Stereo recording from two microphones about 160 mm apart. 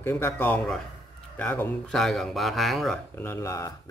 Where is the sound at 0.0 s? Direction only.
15° left (ahead or behind).